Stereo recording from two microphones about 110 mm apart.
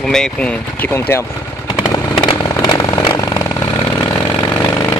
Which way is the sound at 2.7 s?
40° left (ahead or behind).